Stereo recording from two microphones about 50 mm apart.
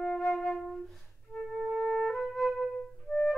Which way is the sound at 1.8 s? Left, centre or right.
Centre.